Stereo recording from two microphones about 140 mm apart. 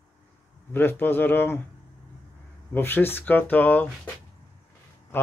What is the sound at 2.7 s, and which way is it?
Speech, 15° left (ahead or behind).